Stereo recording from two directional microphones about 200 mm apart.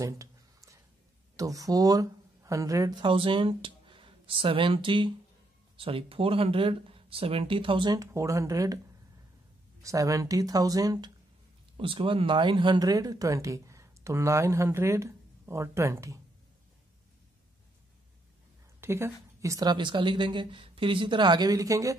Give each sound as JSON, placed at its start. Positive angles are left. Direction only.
{"t": 0.0, "sound": "a sound", "side_deg": -15}
{"t": 1.3, "sound": "speech", "side_deg": -15}
{"t": 18.8, "sound": "a woman's voice", "side_deg": -15}